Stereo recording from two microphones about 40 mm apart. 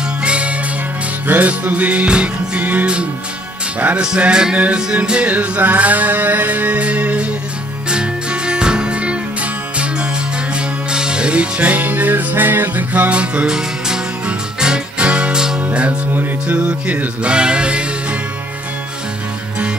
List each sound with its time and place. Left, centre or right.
0.2 s music: right
1.2 s music: right
2.0 s music: right
4.2 s music: right
5.3 s music: right
7.9 s music: right
11.6 s music: right
12.9 s music: right
13.5 s music: centre